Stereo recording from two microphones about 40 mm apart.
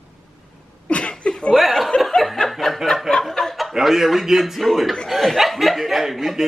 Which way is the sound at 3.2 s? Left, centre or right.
Centre.